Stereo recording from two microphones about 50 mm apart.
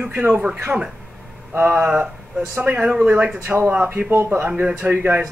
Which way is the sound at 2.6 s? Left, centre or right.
Right.